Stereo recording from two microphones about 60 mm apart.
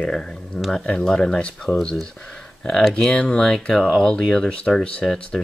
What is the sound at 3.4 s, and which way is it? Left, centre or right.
Speech, centre.